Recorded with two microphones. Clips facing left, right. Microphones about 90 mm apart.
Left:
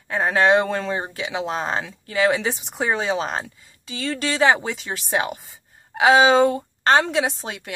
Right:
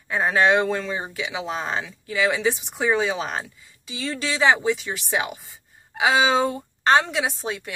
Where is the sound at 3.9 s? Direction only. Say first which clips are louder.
Left 2 dB; 50° left (ahead or behind).